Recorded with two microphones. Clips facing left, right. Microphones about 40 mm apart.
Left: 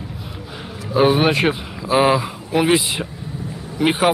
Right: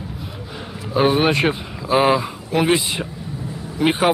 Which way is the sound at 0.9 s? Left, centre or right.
Centre.